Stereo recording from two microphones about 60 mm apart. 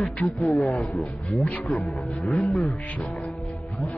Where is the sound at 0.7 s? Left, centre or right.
Centre.